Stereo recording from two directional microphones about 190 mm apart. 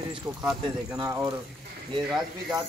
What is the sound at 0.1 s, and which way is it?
A man's voice, 20° right (ahead or behind).